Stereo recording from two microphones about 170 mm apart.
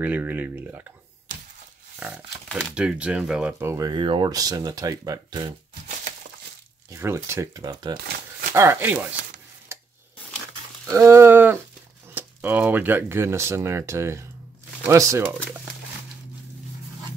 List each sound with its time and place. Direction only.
0.0 s speech: 10° right (ahead or behind)
2.0 s speech: 10° right (ahead or behind)
3.5 s speech: 15° right (ahead or behind)
6.9 s speech: 15° right (ahead or behind)
8.5 s speech: 15° right (ahead or behind)
9.7 s a sound: 15° right (ahead or behind)
10.9 s speech: 15° right (ahead or behind)